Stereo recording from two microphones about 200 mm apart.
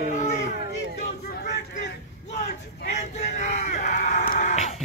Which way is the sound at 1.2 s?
55° left (ahead or behind).